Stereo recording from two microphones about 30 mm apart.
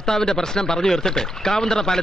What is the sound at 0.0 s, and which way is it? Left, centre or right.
A man's voice, left.